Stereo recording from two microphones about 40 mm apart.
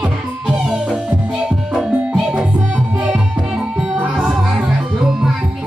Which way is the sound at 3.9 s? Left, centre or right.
Right.